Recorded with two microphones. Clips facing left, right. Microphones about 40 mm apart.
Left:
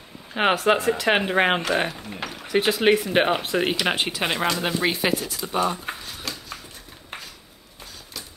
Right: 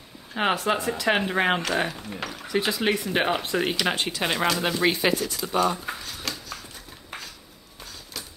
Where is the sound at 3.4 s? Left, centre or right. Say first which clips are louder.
Left 2 dB; centre.